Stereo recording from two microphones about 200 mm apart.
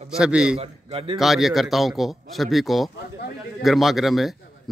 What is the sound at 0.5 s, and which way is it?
Speech, 30° right (ahead or behind).